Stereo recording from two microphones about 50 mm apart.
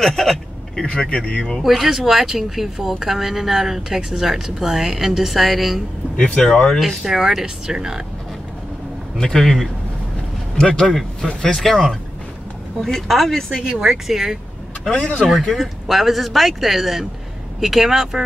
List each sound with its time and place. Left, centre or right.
0.0 s a sound: centre
0.8 s speech: centre
1.6 s speech: centre
6.1 s speech: centre
7.1 s speech: centre
9.2 s speech: centre
13.6 s speech: centre
13.8 s speech: centre